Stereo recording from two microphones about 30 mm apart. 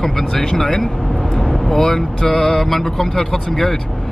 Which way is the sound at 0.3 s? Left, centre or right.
Centre.